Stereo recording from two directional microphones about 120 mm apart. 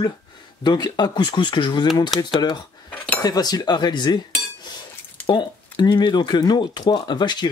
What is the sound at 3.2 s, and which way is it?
Cutlery, 35° left (ahead or behind).